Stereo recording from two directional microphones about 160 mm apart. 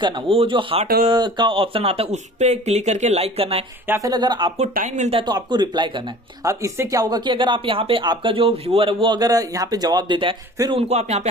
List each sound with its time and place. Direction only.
0.0 s speech: 35° right (ahead or behind)
3.8 s speech: 15° right (ahead or behind)
4.1 s speech: 25° right (ahead or behind)
4.7 s speech: 50° right (ahead or behind)
5.2 s speech: 25° right (ahead or behind)
10.9 s speech: 45° right (ahead or behind)